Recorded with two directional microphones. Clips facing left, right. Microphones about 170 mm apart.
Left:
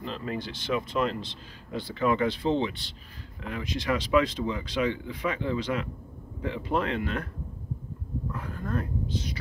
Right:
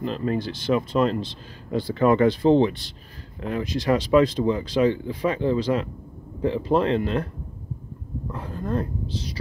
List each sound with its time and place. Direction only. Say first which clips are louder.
0.0 s speech: right 8 dB; 40° right (ahead or behind)
8.3 s a woman's voice: right 6 dB; 30° right (ahead or behind)